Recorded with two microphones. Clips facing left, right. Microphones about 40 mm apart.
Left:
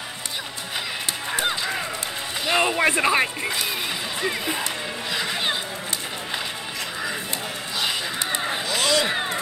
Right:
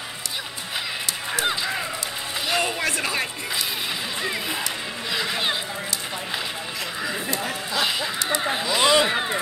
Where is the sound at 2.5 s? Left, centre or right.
Left.